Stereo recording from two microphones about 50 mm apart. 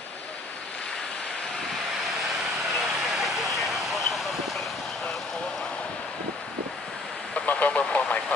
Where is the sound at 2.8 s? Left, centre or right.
Centre.